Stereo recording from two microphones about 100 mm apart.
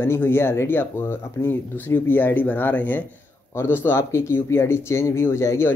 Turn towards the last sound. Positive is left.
turn(degrees=30)  # may be behind; listen again after turning